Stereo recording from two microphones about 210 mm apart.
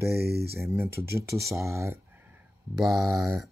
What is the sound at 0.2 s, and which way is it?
Speech, 50° right (ahead or behind).